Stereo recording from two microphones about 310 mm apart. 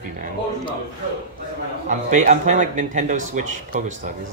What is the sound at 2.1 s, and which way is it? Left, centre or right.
Speech, right.